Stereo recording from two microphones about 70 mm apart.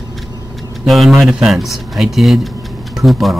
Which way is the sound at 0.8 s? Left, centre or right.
Centre.